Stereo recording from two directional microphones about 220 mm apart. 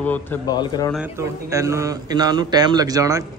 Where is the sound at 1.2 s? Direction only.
15° right (ahead or behind).